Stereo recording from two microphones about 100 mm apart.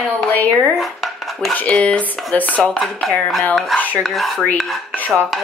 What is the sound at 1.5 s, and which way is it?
Speech, 15° left (ahead or behind).